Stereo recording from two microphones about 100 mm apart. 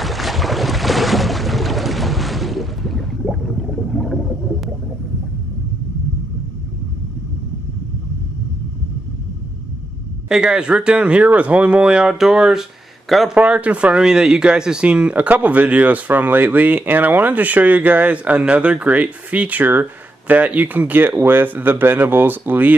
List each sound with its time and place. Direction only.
0.0 s boat: centre (ahead or behind)
10.2 s speech: 5° right (ahead or behind)
13.4 s speech: 15° right (ahead or behind)